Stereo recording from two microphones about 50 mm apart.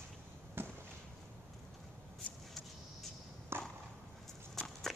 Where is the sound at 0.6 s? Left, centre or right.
Right.